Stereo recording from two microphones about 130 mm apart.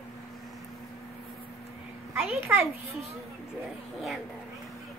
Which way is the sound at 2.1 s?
15° right (ahead or behind).